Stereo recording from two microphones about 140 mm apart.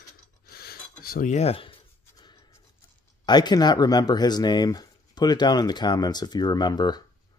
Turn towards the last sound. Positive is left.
turn(degrees=30)  # may be behind; listen again after turning